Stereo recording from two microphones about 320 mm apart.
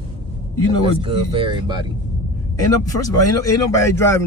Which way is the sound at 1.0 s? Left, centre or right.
Centre.